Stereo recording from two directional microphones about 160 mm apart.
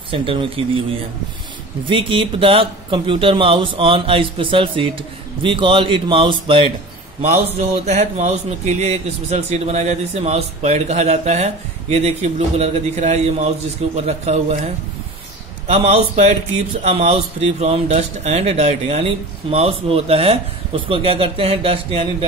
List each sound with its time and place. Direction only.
0.1 s a man's voice: 35° right (ahead or behind)
1.9 s a man's voice: 30° right (ahead or behind)
7.2 s a man's voice: 45° right (ahead or behind)